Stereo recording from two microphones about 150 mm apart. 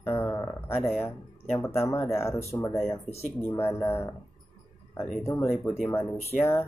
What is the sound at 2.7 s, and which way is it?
Speech, centre (ahead or behind).